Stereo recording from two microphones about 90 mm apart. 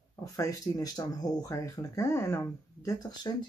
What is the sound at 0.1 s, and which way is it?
Speech, 40° left (ahead or behind).